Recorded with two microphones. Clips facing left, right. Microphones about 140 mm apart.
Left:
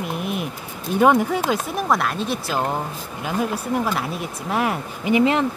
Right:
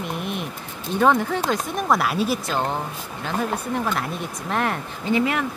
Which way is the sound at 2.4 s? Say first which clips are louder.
Left 1 dB; 5° left (ahead or behind).